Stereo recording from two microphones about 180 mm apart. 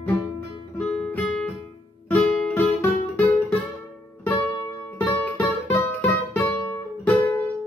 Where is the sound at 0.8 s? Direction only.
5° left (ahead or behind).